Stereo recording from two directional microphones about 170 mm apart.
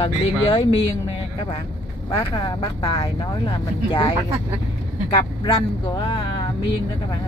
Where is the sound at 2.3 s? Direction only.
20° left (ahead or behind).